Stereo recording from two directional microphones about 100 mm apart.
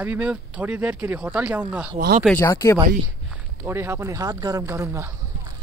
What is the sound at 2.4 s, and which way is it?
Speech, 30° left (ahead or behind).